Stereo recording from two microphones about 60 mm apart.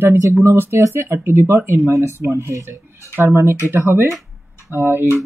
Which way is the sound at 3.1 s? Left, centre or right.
Right.